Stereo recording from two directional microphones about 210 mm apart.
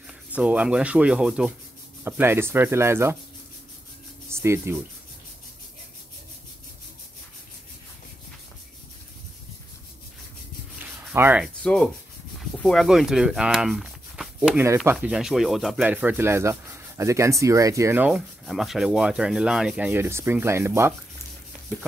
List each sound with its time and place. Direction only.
0.3 s speech: 5° right (ahead or behind)
4.3 s speech: 10° right (ahead or behind)
10.8 s rub: 10° right (ahead or behind)
11.6 s rub: 5° left (ahead or behind)
12.4 s speech: centre (ahead or behind)